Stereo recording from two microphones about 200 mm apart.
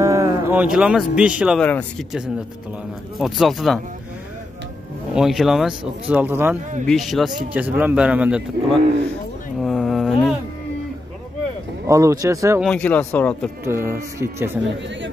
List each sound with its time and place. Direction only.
0.0 s speech: 15° right (ahead or behind)
1.6 s speech: 5° left (ahead or behind)
3.2 s speech: centre (ahead or behind)
5.1 s speech: centre (ahead or behind)
6.9 s speech: centre (ahead or behind)
9.6 s a sound: centre (ahead or behind)
11.9 s speech: 15° right (ahead or behind)
12.6 s speech: 5° left (ahead or behind)
13.7 s speech: 15° right (ahead or behind)